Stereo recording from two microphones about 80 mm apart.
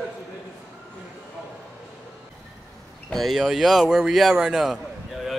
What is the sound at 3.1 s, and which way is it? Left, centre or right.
Speech, centre.